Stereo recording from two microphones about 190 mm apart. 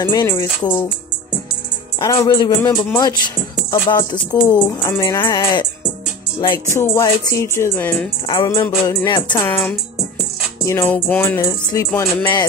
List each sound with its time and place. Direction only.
0.0 s speech: 20° left (ahead or behind)
2.0 s speech: 20° left (ahead or behind)
6.7 s speech: 15° left (ahead or behind)
10.6 s speech: 15° left (ahead or behind)